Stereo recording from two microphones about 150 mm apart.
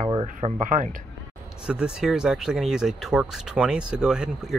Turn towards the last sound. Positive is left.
turn(degrees=-5)  # may be behind; listen again after turning